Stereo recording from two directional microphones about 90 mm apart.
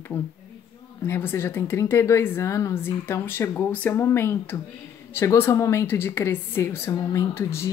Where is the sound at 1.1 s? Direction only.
25° left (ahead or behind).